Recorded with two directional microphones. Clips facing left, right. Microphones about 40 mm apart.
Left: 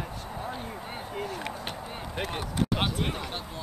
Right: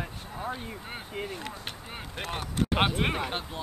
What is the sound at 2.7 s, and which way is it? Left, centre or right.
Speech, right.